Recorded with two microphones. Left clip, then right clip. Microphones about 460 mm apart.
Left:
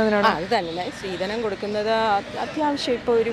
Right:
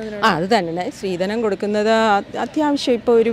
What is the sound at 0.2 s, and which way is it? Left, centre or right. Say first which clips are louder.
Speech: right 4 dB; right.